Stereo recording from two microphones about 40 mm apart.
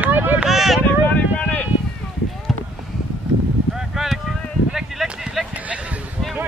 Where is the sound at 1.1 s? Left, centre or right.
Left.